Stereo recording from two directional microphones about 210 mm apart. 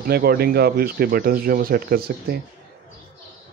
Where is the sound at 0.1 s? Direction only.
50° right (ahead or behind).